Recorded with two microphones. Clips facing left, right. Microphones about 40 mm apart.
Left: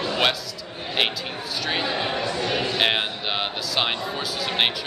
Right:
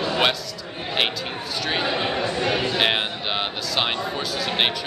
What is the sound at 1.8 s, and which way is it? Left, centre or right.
Speech, right.